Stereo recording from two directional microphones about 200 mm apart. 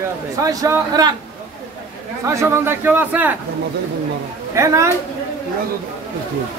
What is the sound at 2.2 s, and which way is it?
A man's voice, 15° right (ahead or behind).